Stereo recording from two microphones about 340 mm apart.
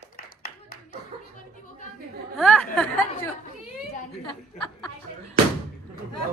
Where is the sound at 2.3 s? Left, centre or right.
Centre.